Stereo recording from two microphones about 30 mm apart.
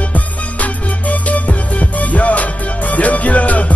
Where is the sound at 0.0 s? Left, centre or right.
Left.